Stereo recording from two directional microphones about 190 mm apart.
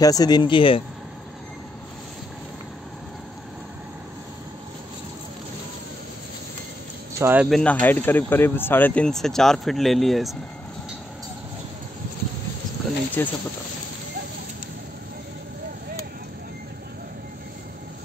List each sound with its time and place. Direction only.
0.0 s speech: 20° left (ahead or behind)
7.2 s speech: 10° right (ahead or behind)
7.4 s speech: 5° left (ahead or behind)
13.2 s speech: 10° left (ahead or behind)